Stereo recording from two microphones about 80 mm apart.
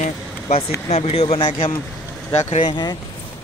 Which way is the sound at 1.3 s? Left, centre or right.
Left.